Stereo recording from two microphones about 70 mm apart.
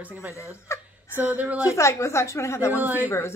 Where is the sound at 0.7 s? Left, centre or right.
Left.